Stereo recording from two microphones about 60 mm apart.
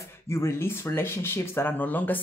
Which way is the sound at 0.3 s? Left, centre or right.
Left.